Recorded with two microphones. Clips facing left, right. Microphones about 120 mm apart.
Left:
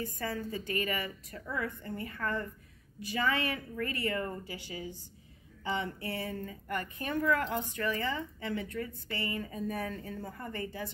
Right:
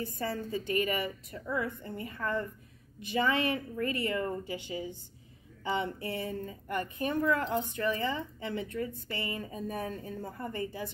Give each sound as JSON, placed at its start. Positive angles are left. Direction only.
{"t": 0.0, "sound": "a woman's voice", "side_deg": -25}